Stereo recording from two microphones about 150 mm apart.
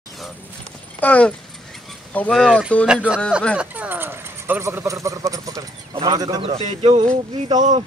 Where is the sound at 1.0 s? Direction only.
10° left (ahead or behind).